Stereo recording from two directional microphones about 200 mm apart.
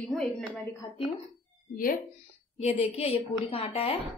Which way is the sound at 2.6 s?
30° left (ahead or behind).